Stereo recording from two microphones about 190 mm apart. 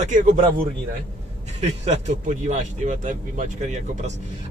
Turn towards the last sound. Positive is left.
turn(degrees=-35)  # may be behind; listen again after turning